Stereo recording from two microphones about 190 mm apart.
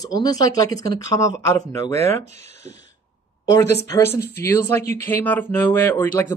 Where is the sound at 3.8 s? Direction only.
15° left (ahead or behind).